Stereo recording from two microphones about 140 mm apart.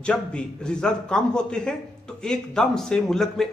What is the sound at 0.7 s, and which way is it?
A man's voice, 5° left (ahead or behind).